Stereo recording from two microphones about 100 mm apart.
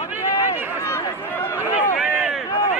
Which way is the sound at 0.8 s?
25° left (ahead or behind).